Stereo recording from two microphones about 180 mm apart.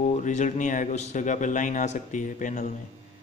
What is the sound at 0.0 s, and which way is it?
A man's voice, 40° left (ahead or behind).